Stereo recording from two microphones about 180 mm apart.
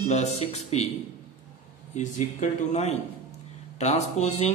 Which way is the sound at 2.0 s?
40° left (ahead or behind).